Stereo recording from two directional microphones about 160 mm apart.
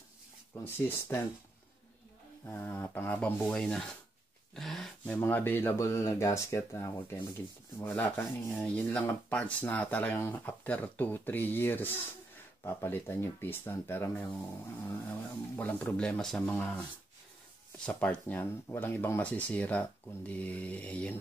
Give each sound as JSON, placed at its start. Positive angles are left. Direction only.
{"t": 0.7, "sound": "rub", "side_deg": 15}
{"t": 2.4, "sound": "rub", "side_deg": 15}